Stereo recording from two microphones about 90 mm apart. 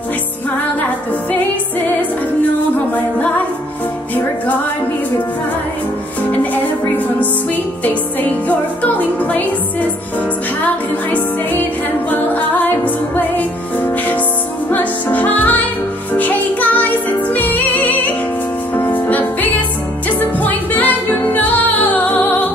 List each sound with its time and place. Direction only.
6.3 s music: 20° left (ahead or behind)